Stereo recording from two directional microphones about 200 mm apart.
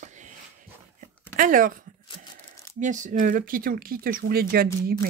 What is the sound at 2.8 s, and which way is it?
Speech, 40° right (ahead or behind).